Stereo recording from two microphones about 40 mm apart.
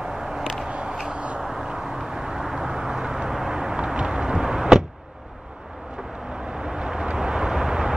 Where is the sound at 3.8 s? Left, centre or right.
Right.